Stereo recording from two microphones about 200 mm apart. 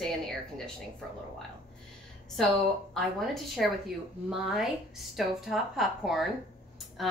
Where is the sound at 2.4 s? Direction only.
Centre (ahead or behind).